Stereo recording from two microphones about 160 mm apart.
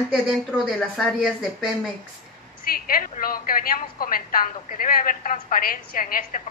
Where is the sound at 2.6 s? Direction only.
60° left (ahead or behind).